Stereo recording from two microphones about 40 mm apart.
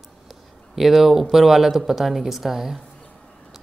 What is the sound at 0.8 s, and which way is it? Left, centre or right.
Speech, centre.